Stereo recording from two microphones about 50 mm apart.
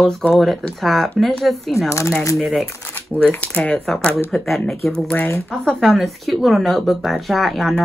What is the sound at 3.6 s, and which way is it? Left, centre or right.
Speech, centre.